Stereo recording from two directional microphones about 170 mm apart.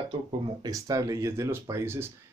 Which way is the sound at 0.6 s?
20° right (ahead or behind).